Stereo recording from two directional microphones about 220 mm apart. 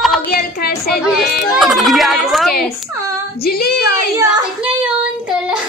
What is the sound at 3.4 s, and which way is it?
Female singing, 45° left (ahead or behind).